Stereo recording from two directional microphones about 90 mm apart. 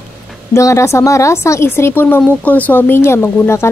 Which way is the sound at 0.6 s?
35° left (ahead or behind).